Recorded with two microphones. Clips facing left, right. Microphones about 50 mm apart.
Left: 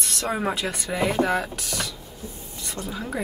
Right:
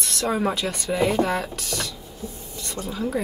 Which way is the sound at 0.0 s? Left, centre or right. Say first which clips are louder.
Right 2 dB; centre.